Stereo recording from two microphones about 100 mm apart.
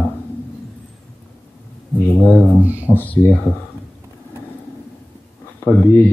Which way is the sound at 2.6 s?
15° right (ahead or behind).